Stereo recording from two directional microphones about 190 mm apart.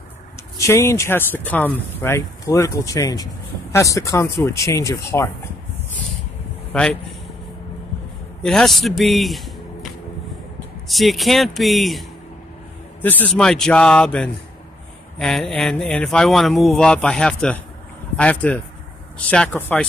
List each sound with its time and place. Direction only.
0.6 s speech: 15° left (ahead or behind)
6.7 s speech: 5° left (ahead or behind)
8.4 s speech: 5° left (ahead or behind)
10.9 s speech: centre (ahead or behind)